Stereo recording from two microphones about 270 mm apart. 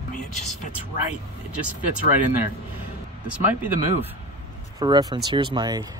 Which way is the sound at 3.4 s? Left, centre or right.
Centre.